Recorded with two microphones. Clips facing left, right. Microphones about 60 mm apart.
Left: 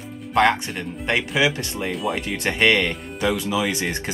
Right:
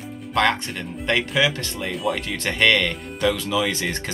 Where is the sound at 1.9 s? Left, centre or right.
Centre.